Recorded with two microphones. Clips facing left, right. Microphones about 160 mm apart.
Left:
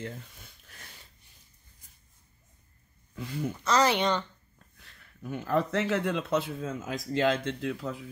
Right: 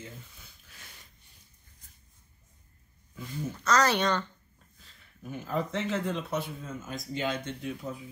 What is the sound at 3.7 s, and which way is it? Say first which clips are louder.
Speech: left 1 dB; 20° left (ahead or behind).